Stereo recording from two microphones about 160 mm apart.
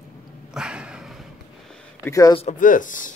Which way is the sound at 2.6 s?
55° left (ahead or behind).